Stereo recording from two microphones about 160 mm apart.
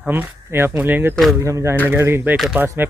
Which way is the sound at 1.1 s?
Centre (ahead or behind).